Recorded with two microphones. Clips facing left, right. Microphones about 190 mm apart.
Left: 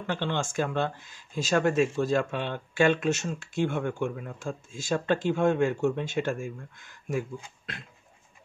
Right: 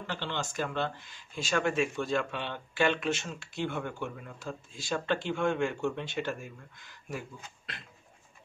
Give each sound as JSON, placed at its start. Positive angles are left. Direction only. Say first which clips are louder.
{"t": 0.0, "sound": "speech", "louder": "left 6 dB", "side_deg": 50}